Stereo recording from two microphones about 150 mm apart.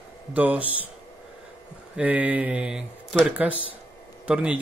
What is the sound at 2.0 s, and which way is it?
A man's voice, 10° right (ahead or behind).